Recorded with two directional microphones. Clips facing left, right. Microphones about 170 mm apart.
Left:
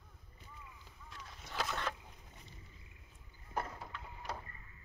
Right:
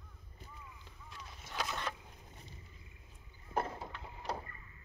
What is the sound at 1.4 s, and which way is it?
Boat, 5° right (ahead or behind).